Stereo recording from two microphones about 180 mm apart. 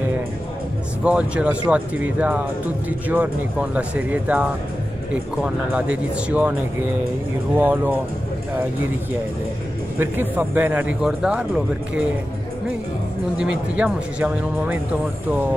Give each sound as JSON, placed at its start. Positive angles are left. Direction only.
{"t": 1.0, "sound": "speech", "side_deg": -5}
{"t": 7.5, "sound": "speech", "side_deg": -10}
{"t": 9.9, "sound": "speech", "side_deg": -10}
{"t": 13.4, "sound": "speech", "side_deg": -5}